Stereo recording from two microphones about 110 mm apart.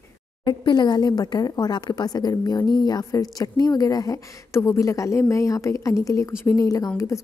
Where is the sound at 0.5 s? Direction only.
40° left (ahead or behind).